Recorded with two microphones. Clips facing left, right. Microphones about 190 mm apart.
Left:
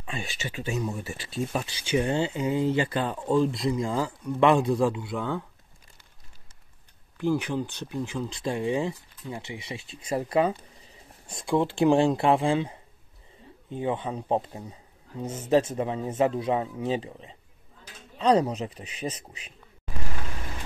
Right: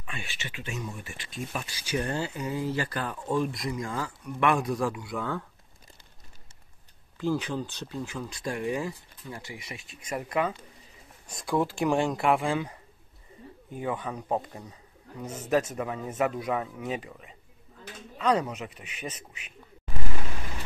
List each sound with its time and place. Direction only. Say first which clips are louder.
0.0 s speech: left 5 dB; 35° left (ahead or behind); by 5.4 s 20° left (ahead or behind)
7.2 s speech: left 3 dB; 15° left (ahead or behind); by 19.5 s 35° left (ahead or behind)